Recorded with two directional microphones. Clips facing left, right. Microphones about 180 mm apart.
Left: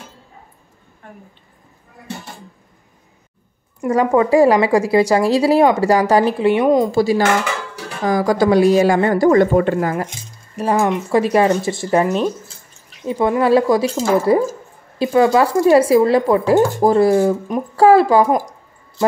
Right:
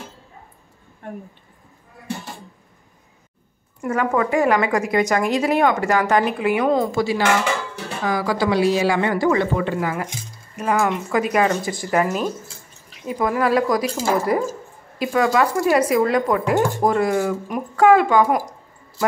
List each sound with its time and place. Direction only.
3.9 s speech: 30° left (ahead or behind)
6.6 s speech: 15° left (ahead or behind)
6.9 s a woman's voice: 35° left (ahead or behind)
10.5 s speech: 35° left (ahead or behind)